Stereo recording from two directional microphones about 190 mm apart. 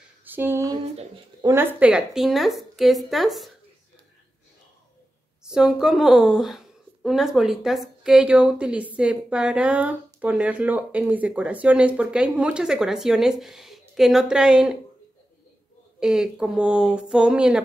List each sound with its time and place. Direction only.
0.2 s a sound: 10° right (ahead or behind)
1.4 s a woman's voice: 15° right (ahead or behind)
5.4 s a woman's voice: 5° right (ahead or behind)
16.0 s a woman's voice: 5° right (ahead or behind)